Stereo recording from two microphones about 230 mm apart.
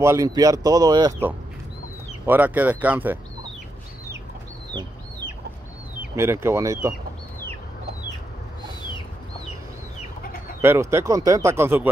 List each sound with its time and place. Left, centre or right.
0.0 s speech: centre
5.9 s speech: centre
10.6 s speech: centre